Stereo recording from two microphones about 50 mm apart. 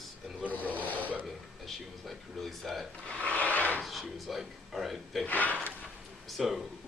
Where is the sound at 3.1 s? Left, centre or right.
Left.